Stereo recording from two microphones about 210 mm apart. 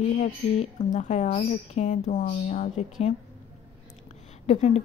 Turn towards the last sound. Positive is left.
turn(degrees=30)  # may be behind; listen again after turning